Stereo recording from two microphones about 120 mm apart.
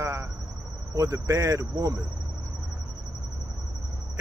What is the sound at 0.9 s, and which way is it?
Speech, 25° right (ahead or behind).